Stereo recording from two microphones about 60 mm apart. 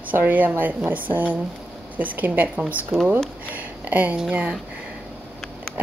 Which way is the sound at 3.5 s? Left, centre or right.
Right.